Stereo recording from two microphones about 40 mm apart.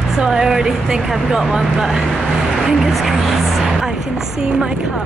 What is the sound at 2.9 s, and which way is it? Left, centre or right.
Music, centre.